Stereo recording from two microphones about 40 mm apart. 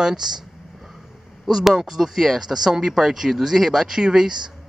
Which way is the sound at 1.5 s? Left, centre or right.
Centre.